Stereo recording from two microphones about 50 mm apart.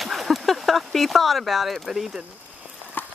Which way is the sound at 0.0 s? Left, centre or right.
Centre.